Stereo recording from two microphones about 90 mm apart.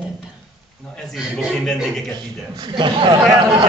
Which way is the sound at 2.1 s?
60° right (ahead or behind).